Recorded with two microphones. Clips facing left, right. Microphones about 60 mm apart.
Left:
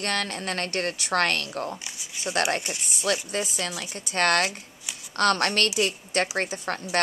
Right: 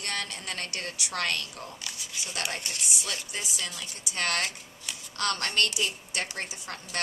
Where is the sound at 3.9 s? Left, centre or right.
Left.